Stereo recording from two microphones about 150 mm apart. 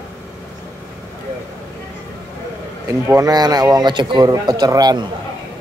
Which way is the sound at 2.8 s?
20° right (ahead or behind).